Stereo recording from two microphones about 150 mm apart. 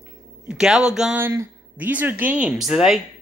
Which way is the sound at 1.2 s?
15° right (ahead or behind).